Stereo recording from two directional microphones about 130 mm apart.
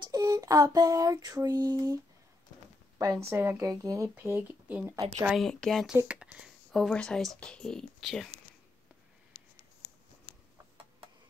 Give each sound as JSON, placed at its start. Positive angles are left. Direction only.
{"t": 0.0, "sound": "a sound", "side_deg": -30}
{"t": 3.0, "sound": "a woman's voice", "side_deg": -25}
{"t": 5.2, "sound": "speech", "side_deg": 0}
{"t": 5.9, "sound": "speech", "side_deg": -10}
{"t": 6.7, "sound": "speech", "side_deg": 5}